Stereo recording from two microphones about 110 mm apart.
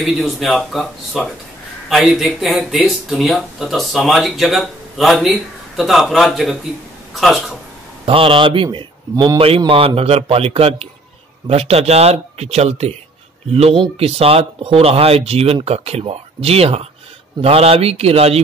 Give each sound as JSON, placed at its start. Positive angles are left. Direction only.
{"t": 0.0, "sound": "speech", "side_deg": 0}
{"t": 8.0, "sound": "speech", "side_deg": -55}
{"t": 9.7, "sound": "a man's voice", "side_deg": -55}